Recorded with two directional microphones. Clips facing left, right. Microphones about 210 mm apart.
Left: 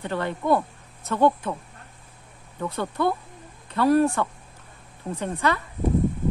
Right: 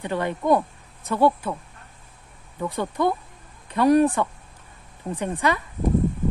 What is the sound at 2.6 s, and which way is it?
Speech, 15° right (ahead or behind).